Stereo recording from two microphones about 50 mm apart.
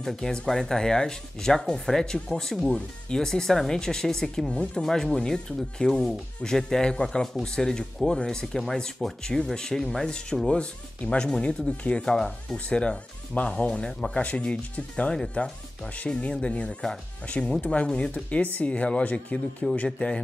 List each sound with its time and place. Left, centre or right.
0.0 s speech: centre